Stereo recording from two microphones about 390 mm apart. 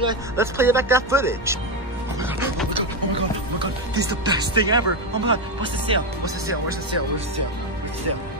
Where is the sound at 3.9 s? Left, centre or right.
Centre.